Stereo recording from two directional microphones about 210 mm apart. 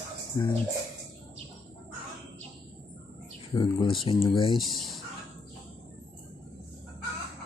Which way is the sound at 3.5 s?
20° left (ahead or behind).